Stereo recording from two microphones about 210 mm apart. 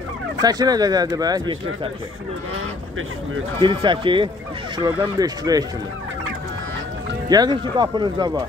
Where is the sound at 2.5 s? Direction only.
75° right (ahead or behind).